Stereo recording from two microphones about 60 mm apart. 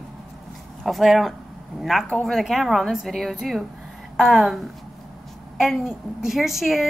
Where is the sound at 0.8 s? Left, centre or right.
Centre.